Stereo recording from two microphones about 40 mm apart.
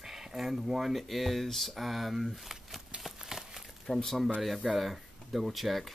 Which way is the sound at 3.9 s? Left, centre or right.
Centre.